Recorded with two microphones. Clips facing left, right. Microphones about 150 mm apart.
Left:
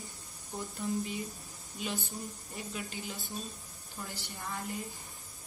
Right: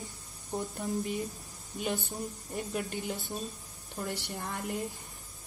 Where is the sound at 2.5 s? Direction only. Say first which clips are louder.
Right 7 dB; 55° right (ahead or behind).